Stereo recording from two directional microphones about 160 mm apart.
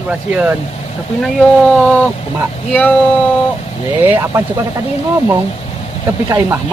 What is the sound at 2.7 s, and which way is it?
Speech, 10° left (ahead or behind).